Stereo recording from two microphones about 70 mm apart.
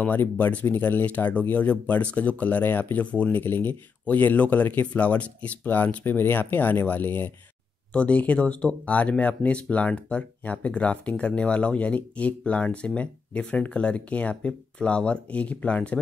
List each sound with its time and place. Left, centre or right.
0.0 s speech: left
7.9 s speech: centre